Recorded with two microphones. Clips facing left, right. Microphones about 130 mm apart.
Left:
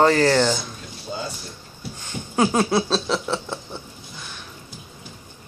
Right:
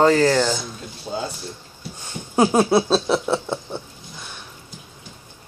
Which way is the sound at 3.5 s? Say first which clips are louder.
Right 5 dB; 25° right (ahead or behind).